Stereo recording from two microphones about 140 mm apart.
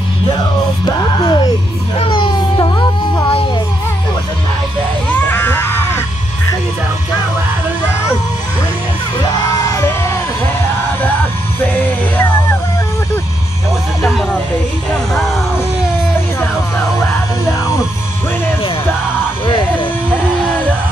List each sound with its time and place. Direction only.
0.8 s music: 35° left (ahead or behind)
2.0 s a sound: 35° left (ahead or behind)
5.1 s music: 15° left (ahead or behind)
9.7 s music: 20° left (ahead or behind)
11.6 s music: 15° left (ahead or behind)
15.1 s music: centre (ahead or behind)
19.4 s music: 35° left (ahead or behind)